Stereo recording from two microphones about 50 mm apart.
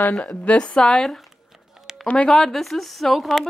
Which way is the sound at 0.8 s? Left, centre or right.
Centre.